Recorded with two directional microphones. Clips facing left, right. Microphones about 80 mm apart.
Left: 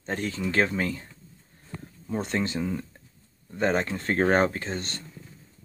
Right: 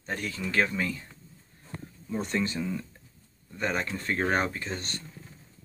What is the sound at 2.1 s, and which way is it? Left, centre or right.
Speech, left.